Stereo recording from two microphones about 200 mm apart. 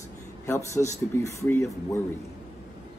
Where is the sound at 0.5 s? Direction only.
15° left (ahead or behind).